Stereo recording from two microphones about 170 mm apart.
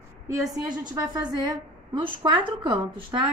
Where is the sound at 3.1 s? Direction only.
25° right (ahead or behind).